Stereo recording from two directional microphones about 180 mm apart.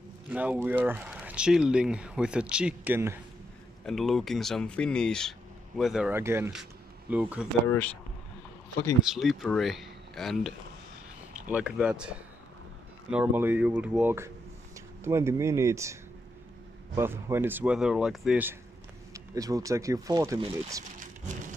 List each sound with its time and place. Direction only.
0.3 s speech: 10° right (ahead or behind)
3.8 s speech: centre (ahead or behind); by 6.5 s 15° right (ahead or behind)
6.5 s a sound: 5° right (ahead or behind)
9.0 s speech: centre (ahead or behind)
11.5 s speech: 5° right (ahead or behind)
19.1 s speech: 20° right (ahead or behind)